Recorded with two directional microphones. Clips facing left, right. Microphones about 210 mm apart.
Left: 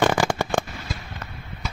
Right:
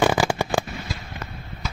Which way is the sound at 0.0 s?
5° right (ahead or behind).